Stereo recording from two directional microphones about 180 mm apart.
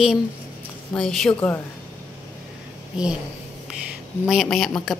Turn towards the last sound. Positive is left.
turn(degrees=0)  # may be behind; listen again after turning